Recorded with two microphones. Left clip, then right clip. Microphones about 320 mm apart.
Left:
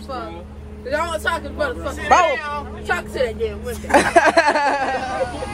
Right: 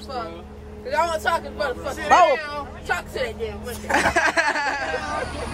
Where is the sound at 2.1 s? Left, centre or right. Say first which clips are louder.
Left 1 dB; centre.